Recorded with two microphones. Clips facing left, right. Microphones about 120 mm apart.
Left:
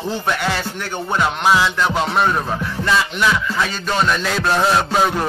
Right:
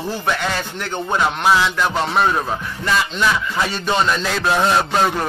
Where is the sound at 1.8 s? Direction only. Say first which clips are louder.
Even; 5° left (ahead or behind).